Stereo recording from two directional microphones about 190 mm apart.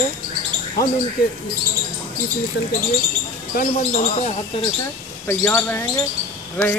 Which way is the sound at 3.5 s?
50° left (ahead or behind).